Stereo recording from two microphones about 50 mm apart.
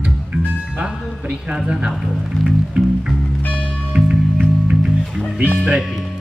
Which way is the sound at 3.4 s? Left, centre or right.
Left.